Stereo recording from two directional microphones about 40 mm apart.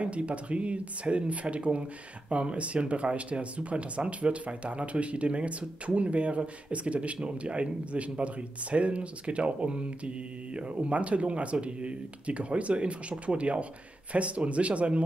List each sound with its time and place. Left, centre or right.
0.0 s speech: right